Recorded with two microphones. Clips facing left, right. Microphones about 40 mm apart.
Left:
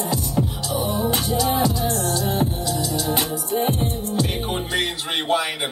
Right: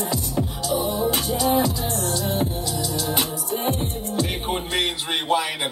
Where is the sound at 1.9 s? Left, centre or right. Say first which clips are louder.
Left 2 dB; left.